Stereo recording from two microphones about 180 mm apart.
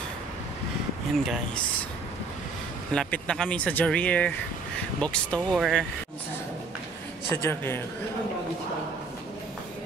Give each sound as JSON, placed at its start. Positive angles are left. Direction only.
{"t": 1.1, "sound": "speech", "side_deg": 0}
{"t": 2.9, "sound": "speech", "side_deg": 5}
{"t": 7.4, "sound": "speech", "side_deg": 15}